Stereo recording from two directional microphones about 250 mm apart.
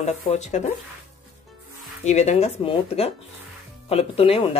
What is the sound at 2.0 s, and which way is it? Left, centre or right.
Speech, left.